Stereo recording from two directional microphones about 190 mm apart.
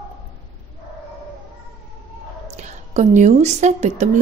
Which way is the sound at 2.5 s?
35° right (ahead or behind).